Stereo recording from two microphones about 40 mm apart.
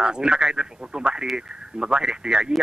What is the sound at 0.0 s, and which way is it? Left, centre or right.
Speech, right.